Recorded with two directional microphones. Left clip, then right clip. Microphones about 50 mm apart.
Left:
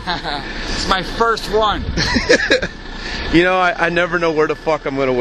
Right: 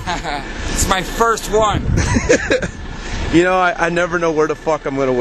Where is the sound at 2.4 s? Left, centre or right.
Centre.